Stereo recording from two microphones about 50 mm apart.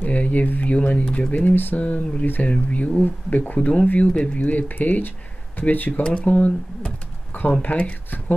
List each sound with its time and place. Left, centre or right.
0.0 s speech: left
1.3 s speech: left
1.8 s speech: left
6.0 s speech: left
7.6 s speech: left